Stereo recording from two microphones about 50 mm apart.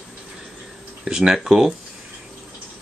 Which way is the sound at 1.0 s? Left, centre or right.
Centre.